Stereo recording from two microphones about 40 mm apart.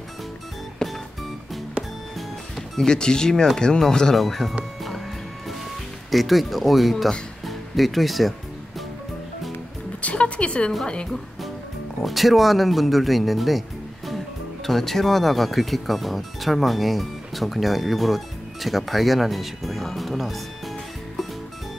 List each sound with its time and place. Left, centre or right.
0.8 s music: centre
2.1 s music: centre
2.8 s speech: centre
4.2 s speech: centre
6.1 s speech: centre
7.4 s music: centre
10.0 s music: left
12.0 s speech: centre